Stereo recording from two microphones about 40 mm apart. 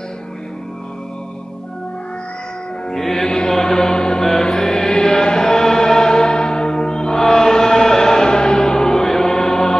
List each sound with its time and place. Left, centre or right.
2.9 s music: centre